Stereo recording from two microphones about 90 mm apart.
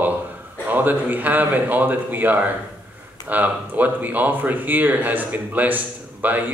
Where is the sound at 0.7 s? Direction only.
20° right (ahead or behind).